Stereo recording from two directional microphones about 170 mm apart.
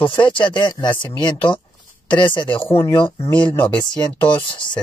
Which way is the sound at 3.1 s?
15° left (ahead or behind).